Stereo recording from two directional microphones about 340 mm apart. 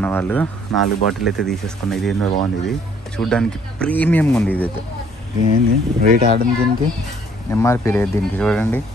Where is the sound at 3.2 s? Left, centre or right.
Centre.